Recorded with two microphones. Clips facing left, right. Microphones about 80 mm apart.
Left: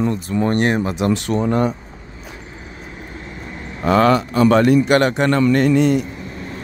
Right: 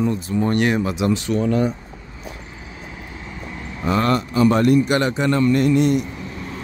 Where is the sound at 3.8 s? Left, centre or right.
Left.